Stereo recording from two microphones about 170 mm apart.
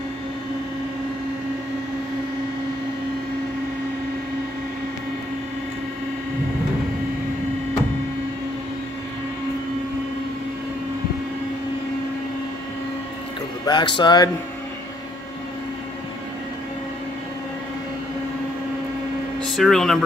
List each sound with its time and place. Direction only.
13.7 s speech: 25° left (ahead or behind)
19.4 s speech: centre (ahead or behind)